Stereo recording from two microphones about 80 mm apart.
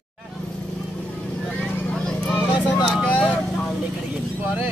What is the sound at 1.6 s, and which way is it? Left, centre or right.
Vehicle, centre.